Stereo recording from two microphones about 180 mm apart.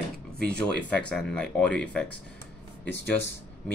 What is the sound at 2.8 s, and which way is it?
Speech, 80° left.